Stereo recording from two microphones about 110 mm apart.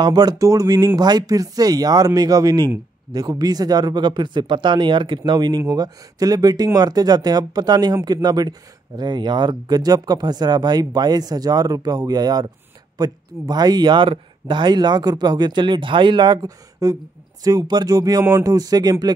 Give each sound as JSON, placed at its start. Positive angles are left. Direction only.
{"t": 0.0, "sound": "speech", "side_deg": -40}